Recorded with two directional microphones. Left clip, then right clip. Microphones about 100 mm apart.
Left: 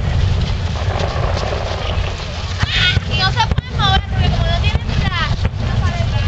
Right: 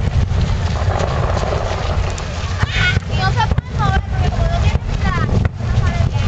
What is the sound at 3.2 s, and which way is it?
Vehicle, 30° left (ahead or behind).